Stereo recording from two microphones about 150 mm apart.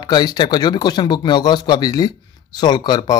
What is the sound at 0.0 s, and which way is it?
Speech, 25° left (ahead or behind).